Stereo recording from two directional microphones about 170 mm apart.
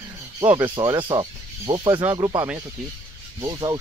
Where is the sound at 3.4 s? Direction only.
25° right (ahead or behind).